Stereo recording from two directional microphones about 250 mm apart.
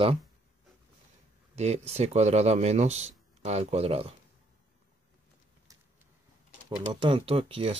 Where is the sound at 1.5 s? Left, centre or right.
Right.